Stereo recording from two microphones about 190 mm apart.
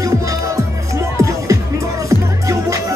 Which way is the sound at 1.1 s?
15° right (ahead or behind).